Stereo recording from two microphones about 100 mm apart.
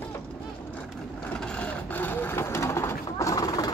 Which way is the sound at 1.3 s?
10° left (ahead or behind).